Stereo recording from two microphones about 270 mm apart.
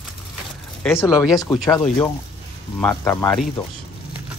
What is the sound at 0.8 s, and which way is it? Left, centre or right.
Speech, centre.